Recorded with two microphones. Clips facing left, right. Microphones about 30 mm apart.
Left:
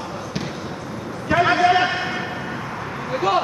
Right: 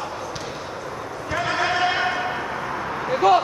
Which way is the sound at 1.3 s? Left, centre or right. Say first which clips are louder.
Left 8 dB; left.